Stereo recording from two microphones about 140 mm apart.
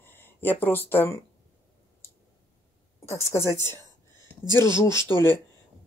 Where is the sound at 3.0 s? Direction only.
20° left (ahead or behind).